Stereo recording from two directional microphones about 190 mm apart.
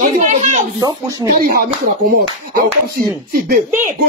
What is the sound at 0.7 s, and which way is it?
Speech, 20° right (ahead or behind).